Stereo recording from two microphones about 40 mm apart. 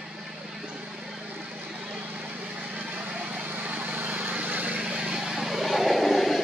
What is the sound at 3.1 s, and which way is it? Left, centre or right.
Vehicle, right.